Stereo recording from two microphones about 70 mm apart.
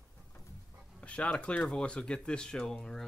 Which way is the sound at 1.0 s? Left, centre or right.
Centre.